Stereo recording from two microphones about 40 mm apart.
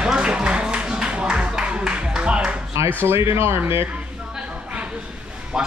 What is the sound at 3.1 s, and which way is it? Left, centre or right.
Speech, right.